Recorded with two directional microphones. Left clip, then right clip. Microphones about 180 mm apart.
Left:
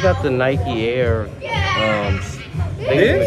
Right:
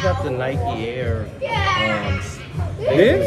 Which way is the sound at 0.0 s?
5° right (ahead or behind).